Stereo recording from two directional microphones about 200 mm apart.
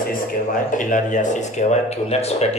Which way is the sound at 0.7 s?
40° left (ahead or behind).